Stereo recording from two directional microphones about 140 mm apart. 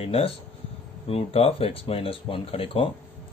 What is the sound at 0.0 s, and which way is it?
Speech, 45° left (ahead or behind).